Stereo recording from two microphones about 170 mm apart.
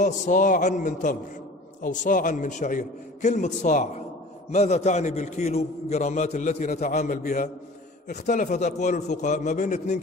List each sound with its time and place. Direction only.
0.0 s a man's voice: 50° left (ahead or behind)